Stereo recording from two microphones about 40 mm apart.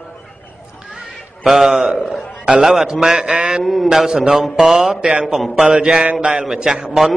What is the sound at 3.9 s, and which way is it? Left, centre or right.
Speech, centre.